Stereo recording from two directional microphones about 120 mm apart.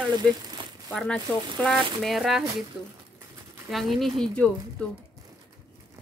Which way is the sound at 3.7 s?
Centre (ahead or behind).